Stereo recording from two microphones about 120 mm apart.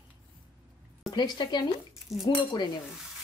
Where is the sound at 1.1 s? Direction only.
35° left (ahead or behind).